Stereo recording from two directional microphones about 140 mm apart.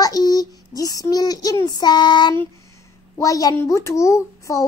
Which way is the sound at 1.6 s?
30° left (ahead or behind).